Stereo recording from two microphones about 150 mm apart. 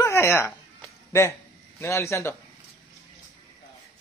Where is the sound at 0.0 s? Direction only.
20° left (ahead or behind).